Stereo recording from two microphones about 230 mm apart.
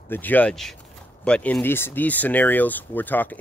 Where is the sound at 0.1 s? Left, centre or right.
Centre.